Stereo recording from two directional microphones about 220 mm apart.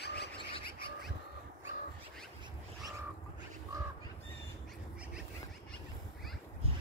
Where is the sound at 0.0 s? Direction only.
50° left (ahead or behind).